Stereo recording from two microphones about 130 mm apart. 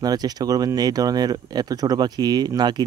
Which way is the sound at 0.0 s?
30° right (ahead or behind).